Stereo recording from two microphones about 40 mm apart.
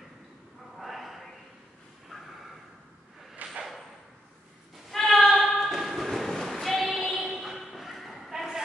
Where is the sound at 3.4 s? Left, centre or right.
Right.